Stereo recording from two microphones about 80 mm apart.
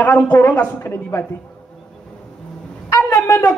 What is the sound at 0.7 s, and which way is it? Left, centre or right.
Speech, left.